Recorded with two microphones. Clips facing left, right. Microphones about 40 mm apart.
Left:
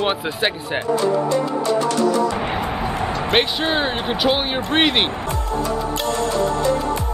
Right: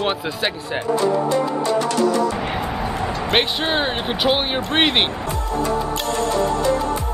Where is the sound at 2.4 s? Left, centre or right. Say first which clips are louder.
Left 1 dB; centre.